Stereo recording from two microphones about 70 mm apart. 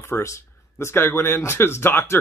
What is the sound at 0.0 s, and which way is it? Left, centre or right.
A man's voice, left.